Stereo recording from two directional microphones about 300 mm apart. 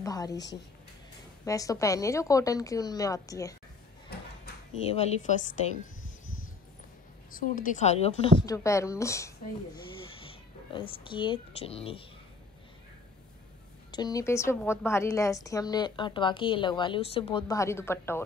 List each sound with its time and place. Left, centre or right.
0.0 s a sound: centre
1.4 s a woman's voice: centre
4.8 s a woman's voice: left
7.3 s a woman's voice: left
13.9 s a woman's voice: centre